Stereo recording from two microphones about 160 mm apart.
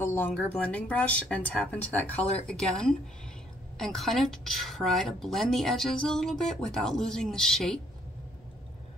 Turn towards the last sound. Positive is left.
turn(degrees=0)  # may be behind; listen again after turning